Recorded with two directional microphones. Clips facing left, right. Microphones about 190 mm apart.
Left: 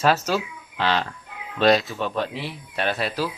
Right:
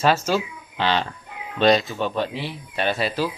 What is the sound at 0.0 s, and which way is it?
Speech, centre (ahead or behind).